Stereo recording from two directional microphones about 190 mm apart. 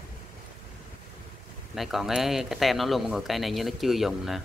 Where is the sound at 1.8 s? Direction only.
Centre (ahead or behind).